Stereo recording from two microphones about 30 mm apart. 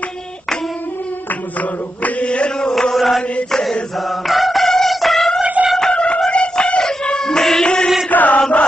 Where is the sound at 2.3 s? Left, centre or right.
Left.